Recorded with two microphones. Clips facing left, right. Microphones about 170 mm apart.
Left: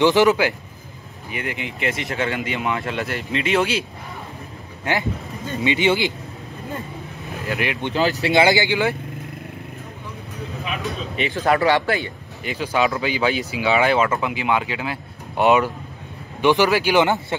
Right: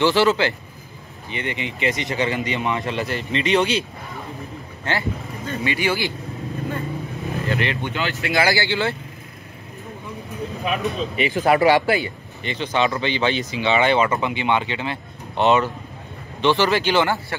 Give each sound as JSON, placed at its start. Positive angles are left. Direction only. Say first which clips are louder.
{"t": 0.0, "sound": "speech", "louder": "left 2 dB", "side_deg": 15}
{"t": 1.3, "sound": "speech", "louder": "right 1 dB", "side_deg": 0}
{"t": 4.9, "sound": "speech", "louder": "left 2 dB", "side_deg": 15}
{"t": 7.4, "sound": "speech", "louder": "even", "side_deg": 10}
{"t": 7.9, "sound": "speech", "louder": "left 5 dB", "side_deg": 35}
{"t": 8.3, "sound": "speech", "louder": "left 2 dB", "side_deg": 25}
{"t": 11.3, "sound": "speech", "louder": "right 2 dB", "side_deg": -10}
{"t": 12.4, "sound": "speech", "louder": "left 1 dB", "side_deg": 5}